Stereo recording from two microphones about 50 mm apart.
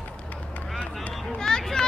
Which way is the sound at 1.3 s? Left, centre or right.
Centre.